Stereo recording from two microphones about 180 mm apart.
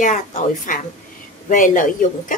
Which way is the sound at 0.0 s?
45° left (ahead or behind).